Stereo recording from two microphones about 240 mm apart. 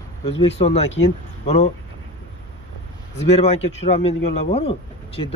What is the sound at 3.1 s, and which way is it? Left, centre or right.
A man's voice, left.